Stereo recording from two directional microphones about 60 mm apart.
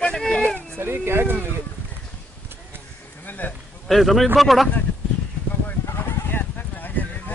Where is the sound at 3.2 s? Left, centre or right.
Left.